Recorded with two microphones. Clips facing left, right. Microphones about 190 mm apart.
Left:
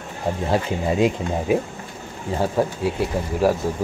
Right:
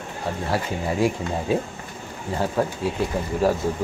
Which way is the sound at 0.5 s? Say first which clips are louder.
Left 4 dB; 20° left (ahead or behind).